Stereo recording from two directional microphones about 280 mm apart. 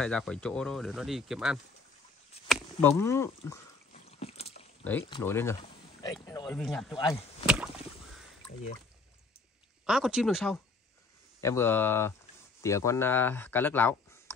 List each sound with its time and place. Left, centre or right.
0.0 s speech: centre
3.9 s rowboat: left
5.1 s speech: centre
6.2 s a sound: centre
6.6 s speech: centre
7.4 s a sound: centre
9.8 s speech: centre